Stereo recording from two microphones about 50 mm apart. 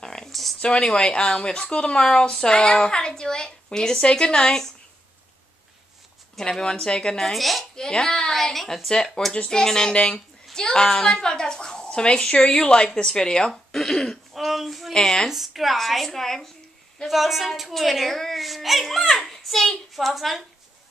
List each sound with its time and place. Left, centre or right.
0.0 s a sound: centre
0.3 s a sound: centre
0.6 s speech: centre
6.3 s speech: centre
7.2 s a woman's voice: centre
7.7 s a child's voice: centre
14.3 s a sound: centre
14.9 s a woman's voice: centre
15.2 s a woman's voice: centre